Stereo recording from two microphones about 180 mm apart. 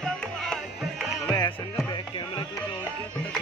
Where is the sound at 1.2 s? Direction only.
20° left (ahead or behind).